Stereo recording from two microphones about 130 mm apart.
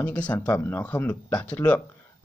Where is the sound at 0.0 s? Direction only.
10° left (ahead or behind).